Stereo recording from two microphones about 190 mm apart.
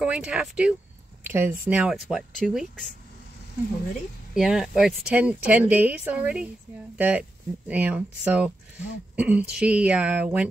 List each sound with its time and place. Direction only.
0.0 s speech: 5° right (ahead or behind)
4.4 s speech: 5° right (ahead or behind)